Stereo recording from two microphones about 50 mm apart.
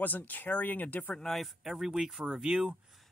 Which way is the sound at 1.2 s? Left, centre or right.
Centre.